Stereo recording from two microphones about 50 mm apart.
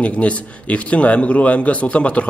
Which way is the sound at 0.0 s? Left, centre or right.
Left.